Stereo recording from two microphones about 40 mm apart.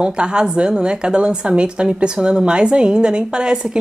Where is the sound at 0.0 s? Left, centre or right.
Right.